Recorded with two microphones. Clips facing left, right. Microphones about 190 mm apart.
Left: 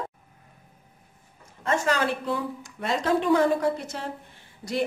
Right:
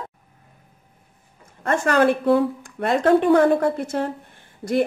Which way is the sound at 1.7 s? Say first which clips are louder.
Right 7 dB; 55° right (ahead or behind).